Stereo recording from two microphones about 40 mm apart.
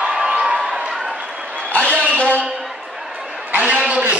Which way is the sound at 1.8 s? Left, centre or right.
Right.